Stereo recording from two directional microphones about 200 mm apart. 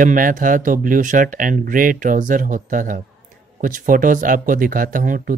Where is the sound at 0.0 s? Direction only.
40° right (ahead or behind).